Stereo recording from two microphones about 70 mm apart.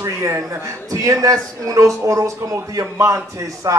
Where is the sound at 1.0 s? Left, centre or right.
Right.